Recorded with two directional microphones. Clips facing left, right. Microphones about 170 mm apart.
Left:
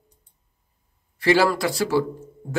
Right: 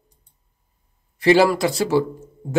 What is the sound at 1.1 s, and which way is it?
Speech, 20° right (ahead or behind).